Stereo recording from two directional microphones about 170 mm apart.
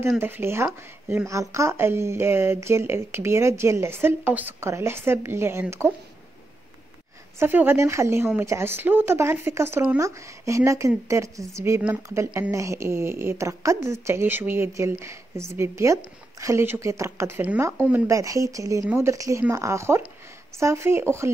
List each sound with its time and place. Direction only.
0.2 s speech: 15° right (ahead or behind)
7.3 s speech: 15° right (ahead or behind)